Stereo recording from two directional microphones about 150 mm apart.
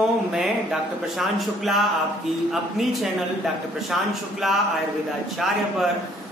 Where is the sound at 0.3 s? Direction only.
Centre (ahead or behind).